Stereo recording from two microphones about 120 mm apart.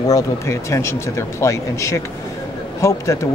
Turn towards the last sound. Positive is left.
turn(degrees=25)  # may be behind; listen again after turning